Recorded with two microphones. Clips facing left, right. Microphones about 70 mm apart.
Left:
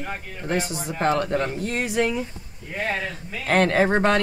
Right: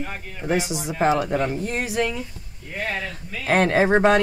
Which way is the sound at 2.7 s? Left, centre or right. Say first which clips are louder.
Left 1 dB; centre.